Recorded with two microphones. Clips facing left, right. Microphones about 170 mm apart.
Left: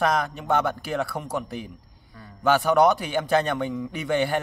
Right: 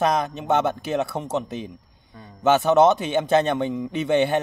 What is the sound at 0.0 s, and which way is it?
A man's voice, 20° right (ahead or behind).